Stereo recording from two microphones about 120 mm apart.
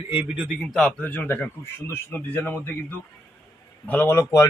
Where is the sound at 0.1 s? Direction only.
15° right (ahead or behind).